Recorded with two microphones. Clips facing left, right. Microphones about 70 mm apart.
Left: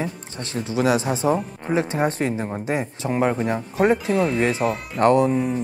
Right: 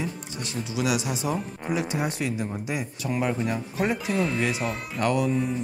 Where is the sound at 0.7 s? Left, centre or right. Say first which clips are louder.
Left 7 dB; left.